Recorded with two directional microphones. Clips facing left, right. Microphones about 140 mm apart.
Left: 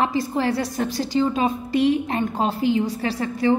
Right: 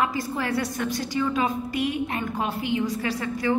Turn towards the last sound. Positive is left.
turn(degrees=30)  # may be behind; listen again after turning